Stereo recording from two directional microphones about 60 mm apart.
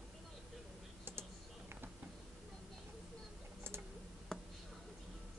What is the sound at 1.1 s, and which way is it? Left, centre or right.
Typing, right.